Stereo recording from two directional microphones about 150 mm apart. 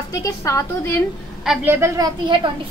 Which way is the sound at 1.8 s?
25° right (ahead or behind).